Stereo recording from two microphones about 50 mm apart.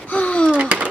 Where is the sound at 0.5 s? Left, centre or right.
Right.